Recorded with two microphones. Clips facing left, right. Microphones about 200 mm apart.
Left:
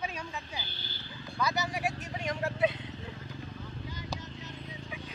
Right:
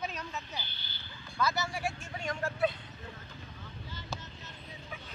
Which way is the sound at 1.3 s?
15° left (ahead or behind).